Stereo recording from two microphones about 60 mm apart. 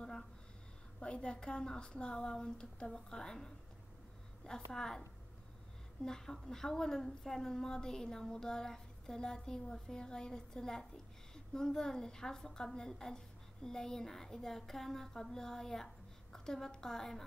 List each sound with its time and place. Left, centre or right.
0.9 s a woman's voice: centre
6.0 s a woman's voice: centre